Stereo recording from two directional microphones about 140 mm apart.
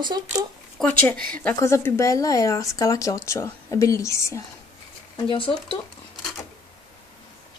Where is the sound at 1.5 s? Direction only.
20° left (ahead or behind).